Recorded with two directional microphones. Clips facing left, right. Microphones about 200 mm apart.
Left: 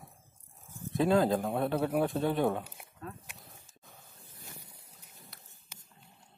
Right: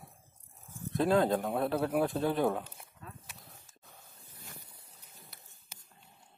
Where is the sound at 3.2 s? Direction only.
5° left (ahead or behind).